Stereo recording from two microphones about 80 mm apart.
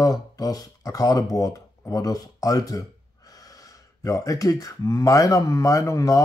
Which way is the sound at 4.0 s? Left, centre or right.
Left.